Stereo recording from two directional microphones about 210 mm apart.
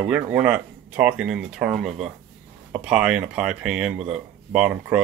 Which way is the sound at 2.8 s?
5° right (ahead or behind).